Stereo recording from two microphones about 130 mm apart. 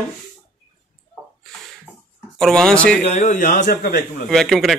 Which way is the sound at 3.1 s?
70° left (ahead or behind).